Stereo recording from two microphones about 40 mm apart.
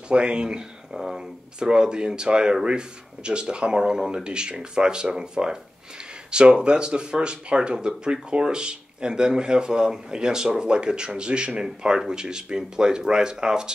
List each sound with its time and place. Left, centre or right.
0.1 s speech: right
0.9 s speech: centre
1.6 s speech: right